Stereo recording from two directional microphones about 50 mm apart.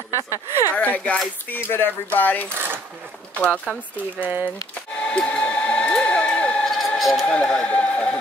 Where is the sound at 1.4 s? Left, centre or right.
Left.